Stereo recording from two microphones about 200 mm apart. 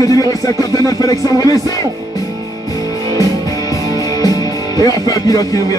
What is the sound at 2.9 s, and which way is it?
Music, 15° left (ahead or behind).